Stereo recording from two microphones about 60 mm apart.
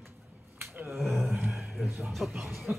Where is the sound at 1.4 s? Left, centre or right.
Centre.